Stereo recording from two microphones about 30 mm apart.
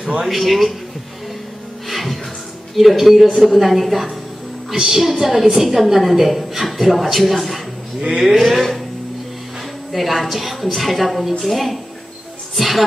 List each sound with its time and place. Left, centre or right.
0.4 s a woman's voice: centre
1.9 s music: centre
2.7 s a woman's voice: centre
4.7 s a woman's voice: right; by 7.6 s centre
8.3 s a sound: centre
9.9 s a woman's voice: centre